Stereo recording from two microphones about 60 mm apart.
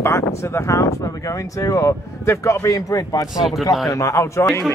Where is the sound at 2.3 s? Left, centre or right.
Left.